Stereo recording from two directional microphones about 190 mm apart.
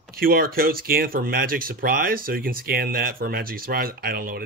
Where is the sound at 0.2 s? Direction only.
50° right (ahead or behind).